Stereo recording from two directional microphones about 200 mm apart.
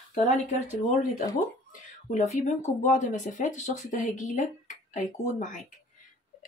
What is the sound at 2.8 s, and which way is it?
Speech, 40° left (ahead or behind).